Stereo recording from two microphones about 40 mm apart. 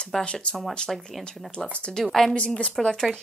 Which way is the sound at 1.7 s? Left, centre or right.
Left.